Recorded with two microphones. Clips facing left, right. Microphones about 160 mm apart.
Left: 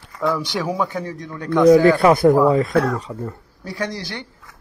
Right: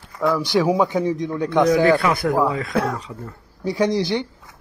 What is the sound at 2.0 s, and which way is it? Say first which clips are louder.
Speech: left 7 dB; 30° left (ahead or behind).